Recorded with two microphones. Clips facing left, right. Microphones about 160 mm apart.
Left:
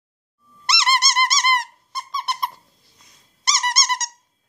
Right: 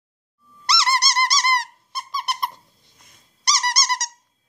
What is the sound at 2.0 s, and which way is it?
Squeak, 5° right (ahead or behind).